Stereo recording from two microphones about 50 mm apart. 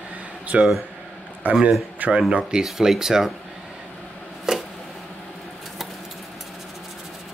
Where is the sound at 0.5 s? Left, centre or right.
Centre.